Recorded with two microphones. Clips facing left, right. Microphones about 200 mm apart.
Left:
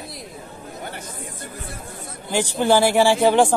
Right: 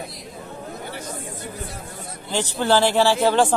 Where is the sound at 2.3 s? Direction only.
15° left (ahead or behind).